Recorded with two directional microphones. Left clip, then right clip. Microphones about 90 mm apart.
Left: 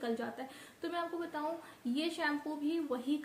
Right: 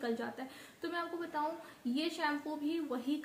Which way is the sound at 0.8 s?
15° left (ahead or behind).